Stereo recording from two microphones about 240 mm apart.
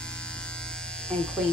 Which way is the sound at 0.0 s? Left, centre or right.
Centre.